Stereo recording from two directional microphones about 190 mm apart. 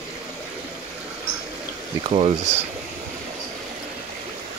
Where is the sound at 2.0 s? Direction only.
35° right (ahead or behind).